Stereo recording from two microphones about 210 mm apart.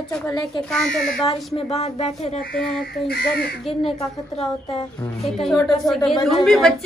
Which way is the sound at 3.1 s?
50° left (ahead or behind).